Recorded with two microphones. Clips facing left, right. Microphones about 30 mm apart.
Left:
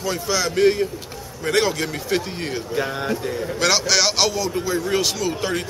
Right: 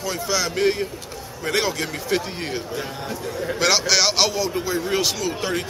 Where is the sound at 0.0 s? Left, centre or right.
Centre.